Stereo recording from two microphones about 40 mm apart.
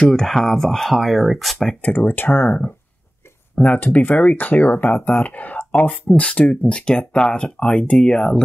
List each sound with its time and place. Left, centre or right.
0.0 s speech: centre
1.8 s speech: left
3.5 s speech: left
6.1 s speech: left